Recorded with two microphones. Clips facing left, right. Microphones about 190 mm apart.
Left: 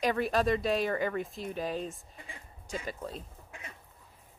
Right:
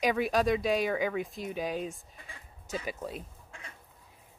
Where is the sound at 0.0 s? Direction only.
Centre (ahead or behind).